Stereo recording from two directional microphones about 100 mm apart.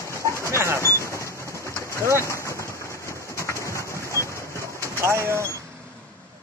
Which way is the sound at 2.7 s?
30° left (ahead or behind).